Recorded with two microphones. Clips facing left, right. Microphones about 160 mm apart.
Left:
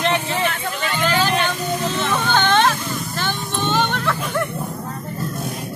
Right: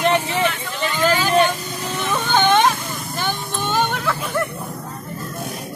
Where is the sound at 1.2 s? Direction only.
10° right (ahead or behind).